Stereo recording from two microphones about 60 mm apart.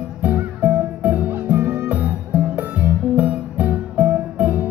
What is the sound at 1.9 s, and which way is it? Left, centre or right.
Music, right.